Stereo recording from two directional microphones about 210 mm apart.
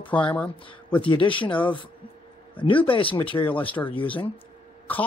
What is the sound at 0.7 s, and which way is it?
Speech, 25° left (ahead or behind).